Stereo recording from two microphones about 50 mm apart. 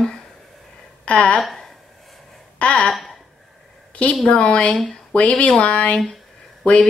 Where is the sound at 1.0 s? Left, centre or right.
Left.